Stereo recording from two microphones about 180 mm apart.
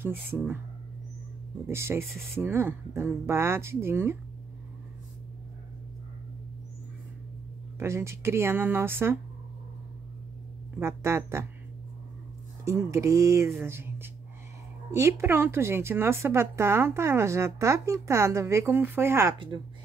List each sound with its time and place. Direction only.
0.0 s speech: 10° right (ahead or behind)
1.7 s speech: 15° right (ahead or behind)
7.8 s speech: 15° right (ahead or behind)
10.8 s speech: 15° right (ahead or behind)
12.6 s speech: 15° right (ahead or behind)
19.3 s speech: 25° right (ahead or behind)